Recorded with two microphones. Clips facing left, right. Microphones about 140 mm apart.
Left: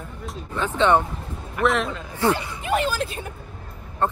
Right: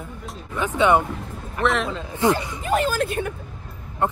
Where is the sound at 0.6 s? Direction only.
10° right (ahead or behind).